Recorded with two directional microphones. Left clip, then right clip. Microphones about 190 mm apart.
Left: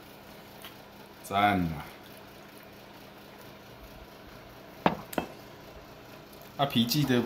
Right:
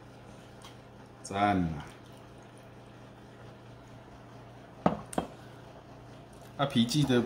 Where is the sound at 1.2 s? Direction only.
15° left (ahead or behind).